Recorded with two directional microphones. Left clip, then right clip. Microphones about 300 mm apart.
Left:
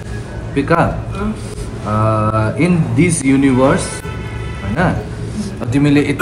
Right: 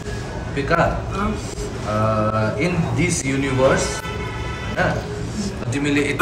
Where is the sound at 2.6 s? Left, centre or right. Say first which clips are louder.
Left 6 dB; centre.